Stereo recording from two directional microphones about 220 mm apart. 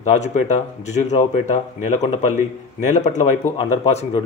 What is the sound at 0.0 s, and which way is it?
A man's voice, 30° left (ahead or behind).